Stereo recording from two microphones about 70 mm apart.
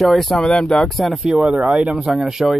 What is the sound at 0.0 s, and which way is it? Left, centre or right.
Speech, centre.